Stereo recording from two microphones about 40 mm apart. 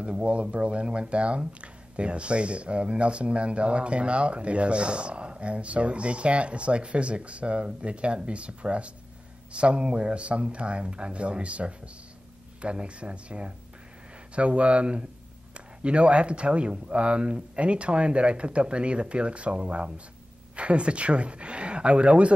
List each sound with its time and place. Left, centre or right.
0.0 s speech: right